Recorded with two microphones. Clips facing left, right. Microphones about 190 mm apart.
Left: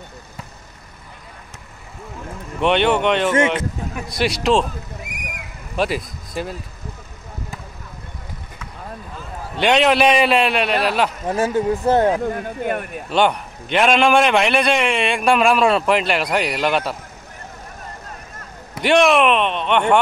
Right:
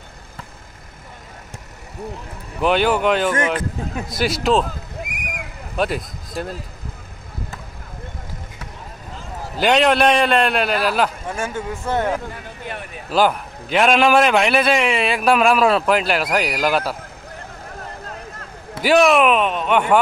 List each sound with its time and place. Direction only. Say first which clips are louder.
2.6 s a man's voice: even; centre (ahead or behind)
3.3 s speech: left 3 dB; 25° left (ahead or behind)
4.1 s a man's voice: left 1 dB; centre (ahead or behind)
5.8 s speech: even; centre (ahead or behind)
9.6 s a man's voice: even; centre (ahead or behind)
11.2 s speech: left 7 dB; 35° left (ahead or behind)
12.3 s speech: left 9 dB; 50° left (ahead or behind)
13.1 s a man's voice: even; centre (ahead or behind)
18.8 s a man's voice: even; centre (ahead or behind)